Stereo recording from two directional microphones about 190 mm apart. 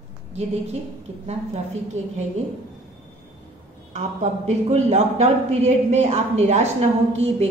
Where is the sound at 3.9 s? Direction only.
35° right (ahead or behind).